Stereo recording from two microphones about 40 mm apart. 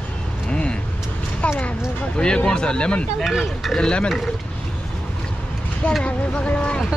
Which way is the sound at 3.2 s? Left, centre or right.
Centre.